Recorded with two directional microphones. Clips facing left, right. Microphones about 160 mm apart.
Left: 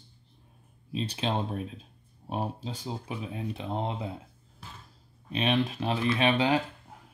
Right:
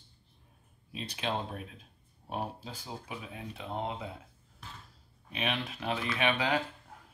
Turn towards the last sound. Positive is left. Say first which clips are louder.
# left 5 dB
turn(degrees=30)  # may be behind; listen again after turning